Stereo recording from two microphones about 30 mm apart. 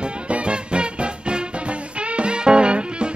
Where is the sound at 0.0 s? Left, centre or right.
Right.